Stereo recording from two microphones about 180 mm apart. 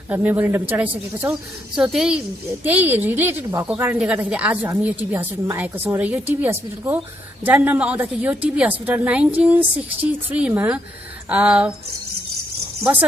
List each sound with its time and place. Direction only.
0.1 s a woman's voice: 10° right (ahead or behind)